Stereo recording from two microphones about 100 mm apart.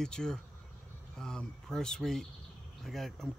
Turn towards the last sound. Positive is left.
turn(degrees=5)  # may be behind; listen again after turning